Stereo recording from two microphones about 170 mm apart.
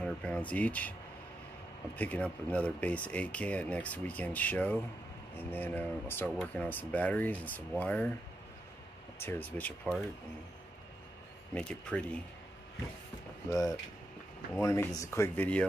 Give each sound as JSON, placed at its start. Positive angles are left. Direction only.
{"t": 0.0, "sound": "speech", "side_deg": 5}
{"t": 2.0, "sound": "speech", "side_deg": 10}
{"t": 9.2, "sound": "speech", "side_deg": 10}
{"t": 11.5, "sound": "speech", "side_deg": 5}
{"t": 13.5, "sound": "speech", "side_deg": 20}